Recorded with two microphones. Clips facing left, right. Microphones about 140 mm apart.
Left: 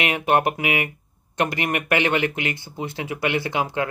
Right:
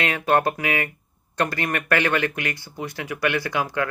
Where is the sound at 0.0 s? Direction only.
20° left (ahead or behind).